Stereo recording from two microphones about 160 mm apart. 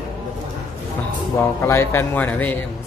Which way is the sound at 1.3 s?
15° left (ahead or behind).